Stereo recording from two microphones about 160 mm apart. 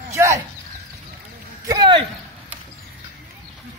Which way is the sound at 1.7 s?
30° right (ahead or behind).